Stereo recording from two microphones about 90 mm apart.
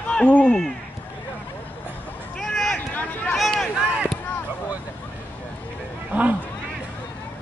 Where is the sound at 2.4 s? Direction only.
5° left (ahead or behind).